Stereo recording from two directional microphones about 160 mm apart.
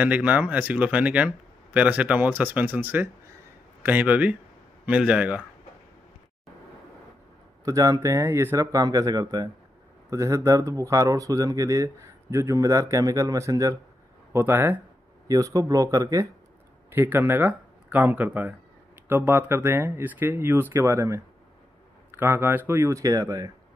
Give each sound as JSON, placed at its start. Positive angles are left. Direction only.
{"t": 0.0, "sound": "speech", "side_deg": -10}
{"t": 7.6, "sound": "speech", "side_deg": -20}